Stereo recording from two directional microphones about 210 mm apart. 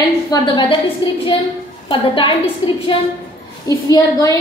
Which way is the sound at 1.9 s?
25° left (ahead or behind).